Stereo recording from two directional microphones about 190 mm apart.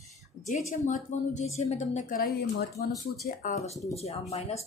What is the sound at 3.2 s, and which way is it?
Speech, 40° left (ahead or behind).